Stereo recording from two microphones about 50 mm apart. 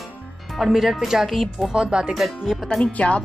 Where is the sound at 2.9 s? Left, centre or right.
Left.